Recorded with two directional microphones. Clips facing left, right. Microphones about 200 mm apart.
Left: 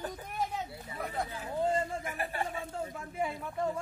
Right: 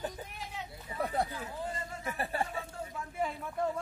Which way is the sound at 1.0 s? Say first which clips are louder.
Right 4 dB; 30° right (ahead or behind).